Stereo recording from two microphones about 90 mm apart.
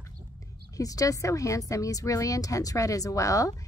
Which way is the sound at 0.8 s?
40° left (ahead or behind).